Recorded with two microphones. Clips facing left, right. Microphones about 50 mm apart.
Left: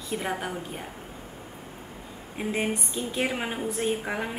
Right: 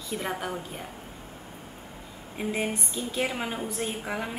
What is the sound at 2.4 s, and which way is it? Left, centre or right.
Speech, centre.